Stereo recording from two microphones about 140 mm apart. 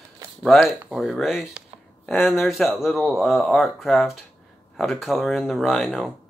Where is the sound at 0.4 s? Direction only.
Centre (ahead or behind).